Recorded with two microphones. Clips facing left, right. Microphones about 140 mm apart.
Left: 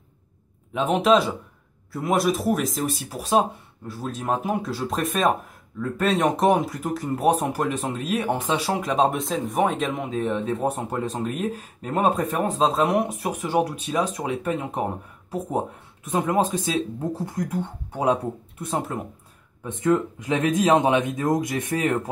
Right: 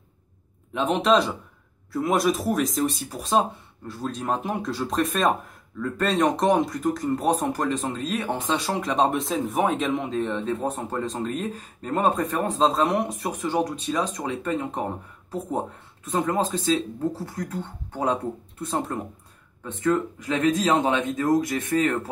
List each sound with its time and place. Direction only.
0.7 s speech: 5° left (ahead or behind)